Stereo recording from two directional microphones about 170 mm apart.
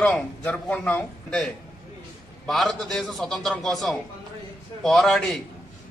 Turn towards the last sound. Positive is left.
turn(degrees=0)  # may be behind; listen again after turning